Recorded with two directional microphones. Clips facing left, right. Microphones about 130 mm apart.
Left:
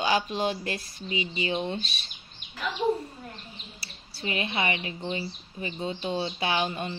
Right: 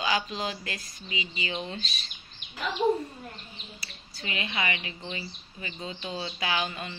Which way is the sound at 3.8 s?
30° left (ahead or behind).